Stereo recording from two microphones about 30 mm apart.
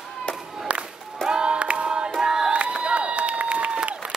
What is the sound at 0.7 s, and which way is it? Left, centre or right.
Music, right.